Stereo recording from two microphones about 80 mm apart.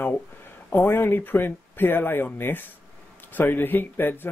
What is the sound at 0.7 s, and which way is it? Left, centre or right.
Speech, left.